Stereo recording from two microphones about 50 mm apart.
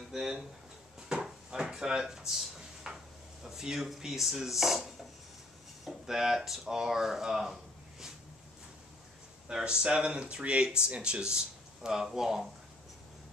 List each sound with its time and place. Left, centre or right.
0.1 s a sound: centre
1.7 s speech: centre
9.5 s speech: centre